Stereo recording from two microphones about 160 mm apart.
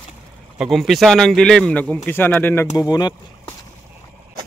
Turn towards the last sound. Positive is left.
turn(degrees=25)  # may be behind; listen again after turning